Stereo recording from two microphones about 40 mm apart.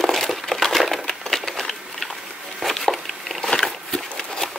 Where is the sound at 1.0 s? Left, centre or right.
Centre.